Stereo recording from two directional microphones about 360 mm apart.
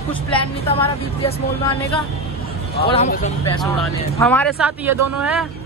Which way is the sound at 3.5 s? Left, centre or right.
Centre.